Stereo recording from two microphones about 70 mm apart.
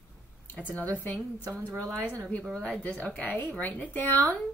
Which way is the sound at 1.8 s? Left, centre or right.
Centre.